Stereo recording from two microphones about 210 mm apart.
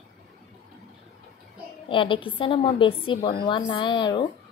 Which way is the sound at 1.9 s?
25° left (ahead or behind).